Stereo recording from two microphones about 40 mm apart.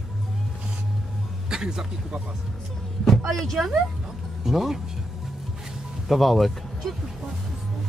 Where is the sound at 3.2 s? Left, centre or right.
Centre.